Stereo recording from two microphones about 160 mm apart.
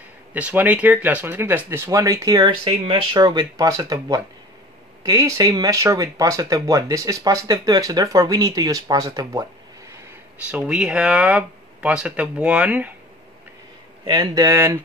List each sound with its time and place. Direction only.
0.3 s speech: 10° right (ahead or behind)
10.4 s speech: 5° right (ahead or behind)
14.0 s speech: 25° right (ahead or behind)